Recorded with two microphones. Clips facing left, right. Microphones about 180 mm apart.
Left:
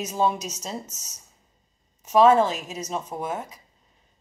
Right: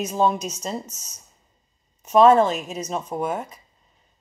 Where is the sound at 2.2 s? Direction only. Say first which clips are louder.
Right 2 dB; 5° left (ahead or behind).